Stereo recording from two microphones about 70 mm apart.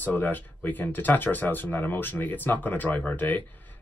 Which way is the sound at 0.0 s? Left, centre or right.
Left.